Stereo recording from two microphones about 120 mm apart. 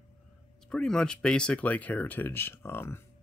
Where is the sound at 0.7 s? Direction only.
5° left (ahead or behind).